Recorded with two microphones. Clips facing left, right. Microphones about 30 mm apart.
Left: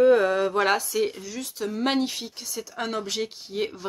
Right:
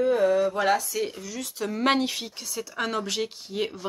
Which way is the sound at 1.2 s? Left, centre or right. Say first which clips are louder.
Even; centre.